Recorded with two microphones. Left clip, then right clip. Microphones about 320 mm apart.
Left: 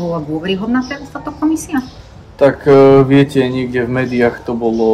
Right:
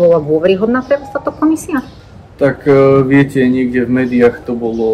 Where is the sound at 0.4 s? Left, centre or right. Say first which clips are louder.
Right 6 dB; centre.